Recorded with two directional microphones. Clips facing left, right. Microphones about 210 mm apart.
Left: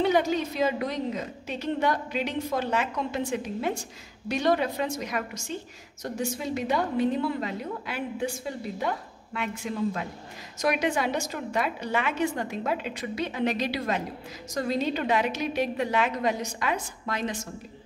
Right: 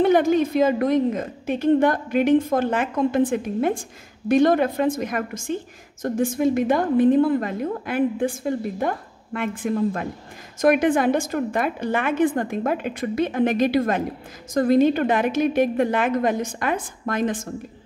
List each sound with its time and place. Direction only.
0.0 s a woman's voice: 50° right (ahead or behind)